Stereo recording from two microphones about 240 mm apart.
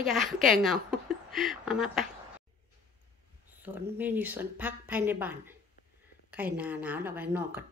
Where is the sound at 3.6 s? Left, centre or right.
Centre.